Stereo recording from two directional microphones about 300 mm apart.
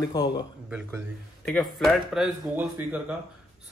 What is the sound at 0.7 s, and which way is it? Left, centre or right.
Speech, centre.